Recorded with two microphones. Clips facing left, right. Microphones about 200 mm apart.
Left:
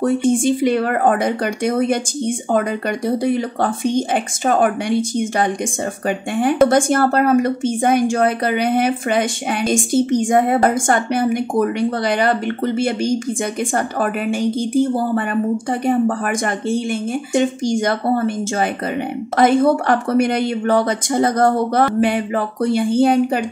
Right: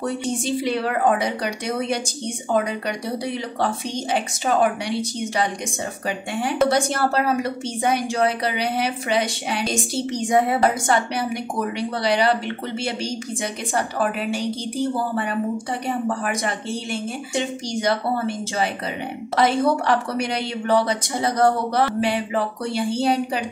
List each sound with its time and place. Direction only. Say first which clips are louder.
0.0 s a woman's voice: left 9 dB; 50° left (ahead or behind)